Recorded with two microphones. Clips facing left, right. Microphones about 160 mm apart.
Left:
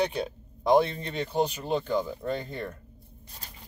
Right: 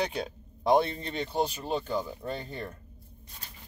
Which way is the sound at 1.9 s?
35° right (ahead or behind).